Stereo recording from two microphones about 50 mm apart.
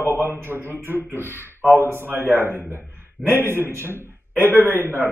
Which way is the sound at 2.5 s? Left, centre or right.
Left.